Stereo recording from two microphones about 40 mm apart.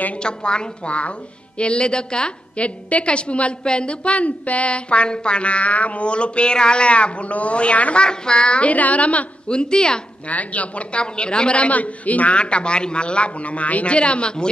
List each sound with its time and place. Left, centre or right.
0.2 s a woman's voice: left
9.5 s a woman's voice: left
10.2 s a man's voice: left